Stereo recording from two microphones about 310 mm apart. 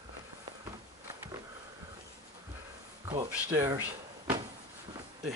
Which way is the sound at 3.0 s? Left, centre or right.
Centre.